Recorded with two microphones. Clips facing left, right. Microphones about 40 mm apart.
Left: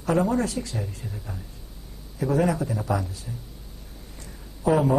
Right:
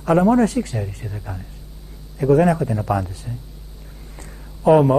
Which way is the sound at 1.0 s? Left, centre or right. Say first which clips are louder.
Right 5 dB; right.